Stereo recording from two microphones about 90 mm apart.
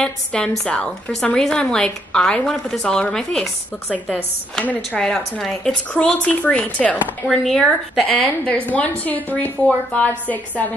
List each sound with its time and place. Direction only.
0.0 s a woman's voice: 10° left (ahead or behind)
7.2 s speech: centre (ahead or behind)
8.1 s a woman's voice: 15° left (ahead or behind)